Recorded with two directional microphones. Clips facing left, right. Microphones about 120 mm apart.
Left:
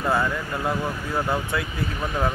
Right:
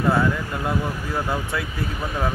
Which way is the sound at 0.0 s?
Centre (ahead or behind).